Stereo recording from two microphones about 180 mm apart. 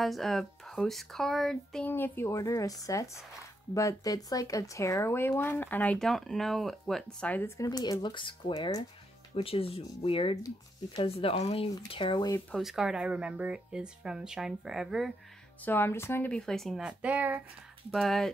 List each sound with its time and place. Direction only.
0.0 s speech: centre (ahead or behind); by 12.4 s 25° left (ahead or behind)
12.4 s speech: centre (ahead or behind)
15.6 s speech: 10° left (ahead or behind); by 17.4 s 10° right (ahead or behind)
17.9 s speech: centre (ahead or behind)